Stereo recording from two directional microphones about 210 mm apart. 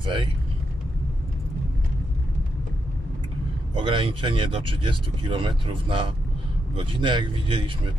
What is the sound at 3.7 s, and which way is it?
Speech, 25° right (ahead or behind).